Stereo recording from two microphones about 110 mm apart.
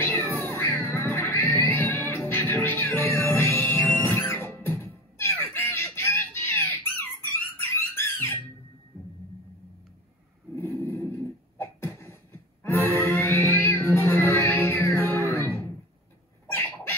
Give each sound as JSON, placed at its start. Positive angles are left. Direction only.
{"t": 0.0, "sound": "music", "side_deg": 20}
{"t": 7.6, "sound": "squeak", "side_deg": 25}
{"t": 10.5, "sound": "beatboxing", "side_deg": 20}
{"t": 16.4, "sound": "bird", "side_deg": 20}